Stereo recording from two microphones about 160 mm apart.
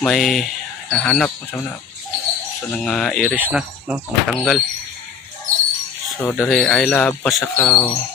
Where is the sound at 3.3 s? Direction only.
10° right (ahead or behind).